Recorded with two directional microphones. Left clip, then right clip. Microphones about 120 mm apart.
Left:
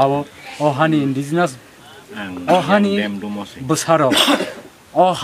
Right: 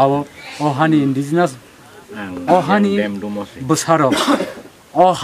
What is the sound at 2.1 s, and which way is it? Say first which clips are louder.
Speech: right 1 dB; 30° left (ahead or behind).